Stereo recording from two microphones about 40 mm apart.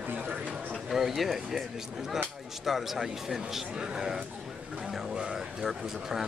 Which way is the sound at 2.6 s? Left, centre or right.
Centre.